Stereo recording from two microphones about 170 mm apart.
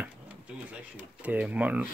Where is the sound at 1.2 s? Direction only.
10° right (ahead or behind).